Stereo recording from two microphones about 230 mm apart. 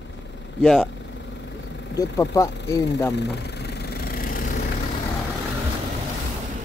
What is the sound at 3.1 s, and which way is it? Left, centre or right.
Engine, left.